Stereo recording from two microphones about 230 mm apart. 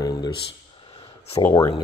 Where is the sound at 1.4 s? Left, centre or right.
Centre.